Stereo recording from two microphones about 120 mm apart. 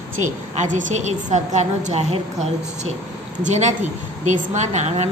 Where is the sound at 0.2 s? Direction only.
90° right; by 2.1 s 75° right (ahead or behind).